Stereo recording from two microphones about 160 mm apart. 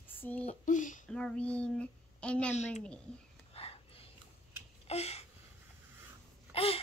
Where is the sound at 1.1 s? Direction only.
5° left (ahead or behind).